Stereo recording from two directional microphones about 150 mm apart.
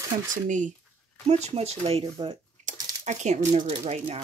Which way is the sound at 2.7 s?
55° right (ahead or behind).